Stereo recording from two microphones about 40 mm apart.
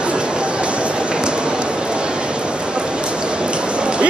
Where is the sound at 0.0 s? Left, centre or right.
Right.